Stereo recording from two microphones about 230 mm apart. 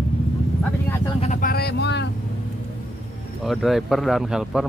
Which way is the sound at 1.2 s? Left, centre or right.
Left.